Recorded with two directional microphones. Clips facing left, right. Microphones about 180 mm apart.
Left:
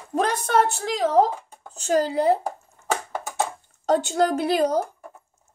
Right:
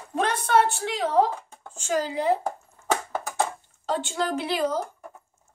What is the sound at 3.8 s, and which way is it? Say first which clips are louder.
Speech: left 7 dB; 45° left (ahead or behind).